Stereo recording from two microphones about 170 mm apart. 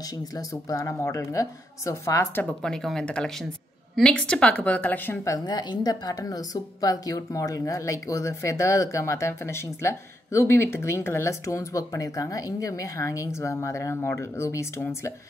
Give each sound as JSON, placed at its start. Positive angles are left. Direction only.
{"t": 0.2, "sound": "speech", "side_deg": 20}
{"t": 2.4, "sound": "speech", "side_deg": 5}